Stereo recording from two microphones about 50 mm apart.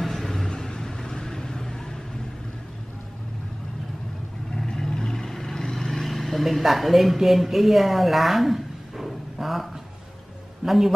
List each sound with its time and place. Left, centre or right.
0.0 s vehicle: centre
4.6 s vehicle: centre
10.6 s a man's voice: centre